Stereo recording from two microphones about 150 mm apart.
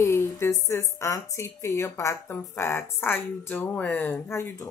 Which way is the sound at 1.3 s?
20° left (ahead or behind).